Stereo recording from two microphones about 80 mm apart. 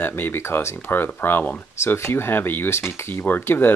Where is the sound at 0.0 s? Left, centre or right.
Left.